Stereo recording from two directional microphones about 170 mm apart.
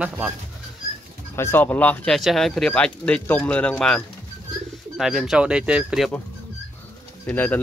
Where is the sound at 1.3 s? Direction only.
15° left (ahead or behind).